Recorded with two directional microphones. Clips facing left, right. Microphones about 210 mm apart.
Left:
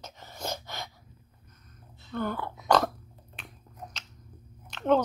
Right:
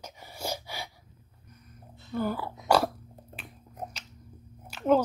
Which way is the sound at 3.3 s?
5° right (ahead or behind).